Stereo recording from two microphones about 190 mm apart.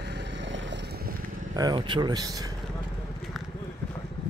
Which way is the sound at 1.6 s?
20° right (ahead or behind).